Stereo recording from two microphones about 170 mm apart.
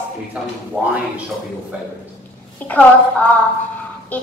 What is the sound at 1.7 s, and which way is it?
Speech, 10° right (ahead or behind).